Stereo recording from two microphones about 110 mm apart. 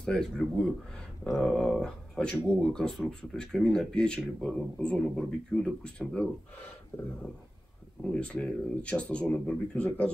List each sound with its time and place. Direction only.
0.0 s speech: 5° left (ahead or behind)
6.9 s a sound: 25° left (ahead or behind)
8.0 s speech: 10° left (ahead or behind)